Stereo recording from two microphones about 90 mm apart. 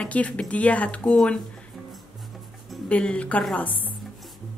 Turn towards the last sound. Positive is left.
turn(degrees=20)  # may be behind; listen again after turning